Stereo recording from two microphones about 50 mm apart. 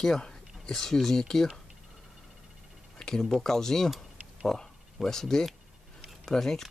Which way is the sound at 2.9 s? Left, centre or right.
Centre.